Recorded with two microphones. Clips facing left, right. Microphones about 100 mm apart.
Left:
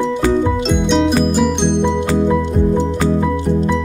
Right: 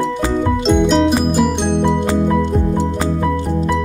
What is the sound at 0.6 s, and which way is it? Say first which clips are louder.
Music: right 2 dB; centre (ahead or behind).